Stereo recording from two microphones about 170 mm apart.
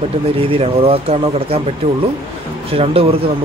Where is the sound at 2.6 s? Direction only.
35° right (ahead or behind).